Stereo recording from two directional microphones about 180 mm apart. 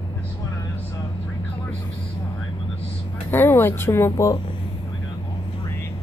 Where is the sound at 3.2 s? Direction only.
15° left (ahead or behind).